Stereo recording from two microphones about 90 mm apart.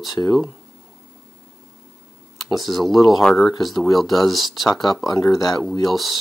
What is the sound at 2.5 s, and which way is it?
Speech, centre (ahead or behind).